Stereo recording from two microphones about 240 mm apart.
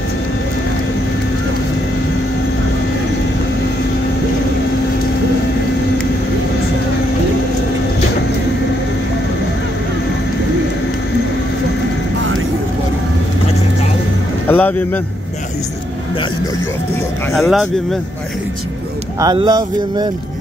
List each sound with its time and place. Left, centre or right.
14.5 s music: centre
17.3 s speech: centre
19.1 s speech: centre